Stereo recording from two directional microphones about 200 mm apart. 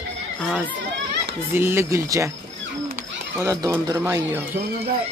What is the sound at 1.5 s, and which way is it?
Speech, 10° right (ahead or behind).